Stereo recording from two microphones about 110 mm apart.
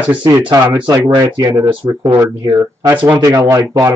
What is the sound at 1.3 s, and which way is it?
Speech, 40° right (ahead or behind).